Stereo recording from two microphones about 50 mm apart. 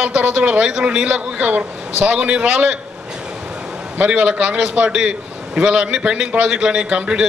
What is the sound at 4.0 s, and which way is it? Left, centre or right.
A man's voice, centre.